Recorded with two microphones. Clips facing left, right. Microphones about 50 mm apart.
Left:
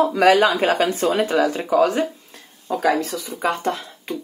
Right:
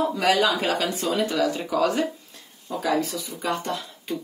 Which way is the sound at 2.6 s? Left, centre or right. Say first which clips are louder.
Left 5 dB; left.